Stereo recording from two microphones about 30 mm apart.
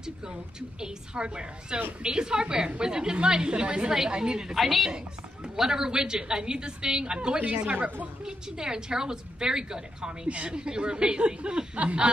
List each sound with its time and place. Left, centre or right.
0.0 s a woman's voice: right
4.6 s a woman's voice: centre
5.6 s a woman's voice: centre
7.7 s a woman's voice: right
8.2 s a woman's voice: right
10.2 s speech: right